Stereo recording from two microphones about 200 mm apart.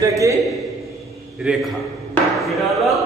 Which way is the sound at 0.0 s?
15° right (ahead or behind).